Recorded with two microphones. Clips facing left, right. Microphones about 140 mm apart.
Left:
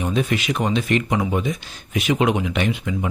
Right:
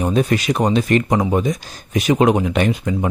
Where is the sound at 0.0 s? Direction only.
40° right (ahead or behind).